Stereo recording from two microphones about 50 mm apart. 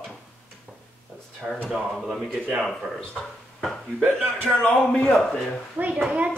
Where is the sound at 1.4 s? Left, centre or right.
Right.